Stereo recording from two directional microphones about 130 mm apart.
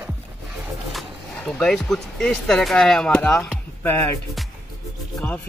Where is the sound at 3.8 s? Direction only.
15° left (ahead or behind).